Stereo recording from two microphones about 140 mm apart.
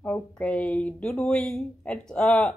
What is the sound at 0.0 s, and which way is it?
Speech, 10° left (ahead or behind).